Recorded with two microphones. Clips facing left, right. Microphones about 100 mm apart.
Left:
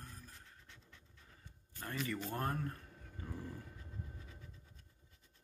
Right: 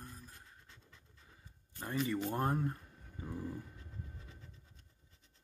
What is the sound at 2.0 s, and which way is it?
Speech, 20° right (ahead or behind).